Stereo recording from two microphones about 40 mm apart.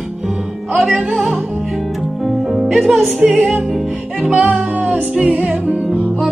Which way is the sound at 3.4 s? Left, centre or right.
Right.